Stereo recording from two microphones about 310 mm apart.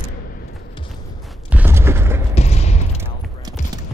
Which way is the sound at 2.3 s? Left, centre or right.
Left.